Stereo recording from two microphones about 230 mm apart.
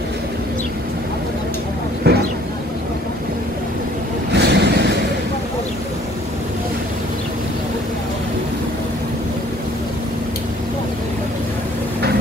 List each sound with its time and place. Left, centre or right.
2.1 s vehicle: right
4.3 s vehicle: right